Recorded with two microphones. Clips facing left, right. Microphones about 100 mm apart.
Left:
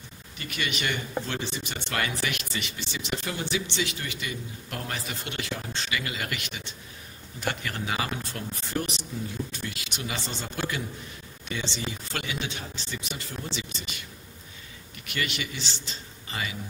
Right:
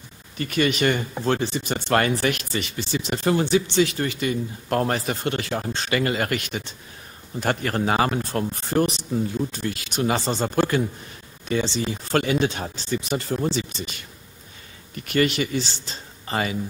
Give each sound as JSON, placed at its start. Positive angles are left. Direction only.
{"t": 0.4, "sound": "speech", "side_deg": -40}
{"t": 15.0, "sound": "a man's voice", "side_deg": -40}